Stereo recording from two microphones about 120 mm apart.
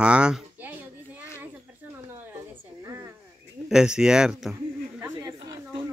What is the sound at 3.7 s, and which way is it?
Speech, 5° right (ahead or behind).